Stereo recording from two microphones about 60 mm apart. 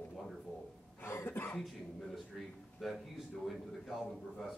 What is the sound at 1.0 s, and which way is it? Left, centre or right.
Cough, left.